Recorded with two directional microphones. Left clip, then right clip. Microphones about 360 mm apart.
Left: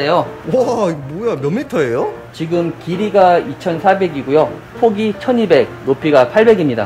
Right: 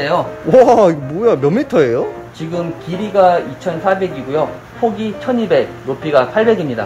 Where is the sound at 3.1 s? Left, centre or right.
Left.